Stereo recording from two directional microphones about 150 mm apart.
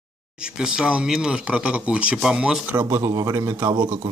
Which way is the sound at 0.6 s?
5° right (ahead or behind).